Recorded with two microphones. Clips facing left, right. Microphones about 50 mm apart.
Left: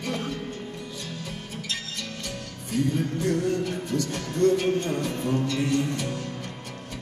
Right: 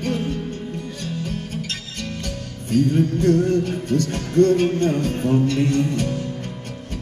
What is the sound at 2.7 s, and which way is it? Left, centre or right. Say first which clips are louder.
Music: right 7 dB; right.